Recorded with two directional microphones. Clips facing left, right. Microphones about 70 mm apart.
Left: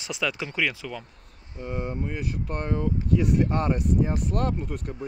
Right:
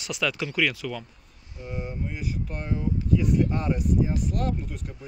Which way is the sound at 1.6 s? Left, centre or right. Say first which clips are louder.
Left 3 dB; left.